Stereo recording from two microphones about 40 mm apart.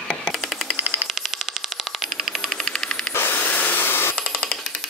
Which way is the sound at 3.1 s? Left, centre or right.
Left.